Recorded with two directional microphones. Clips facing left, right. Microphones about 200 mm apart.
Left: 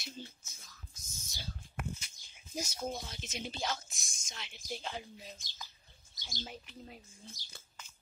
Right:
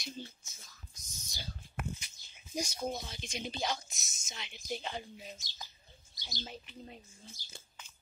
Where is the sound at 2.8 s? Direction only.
5° right (ahead or behind).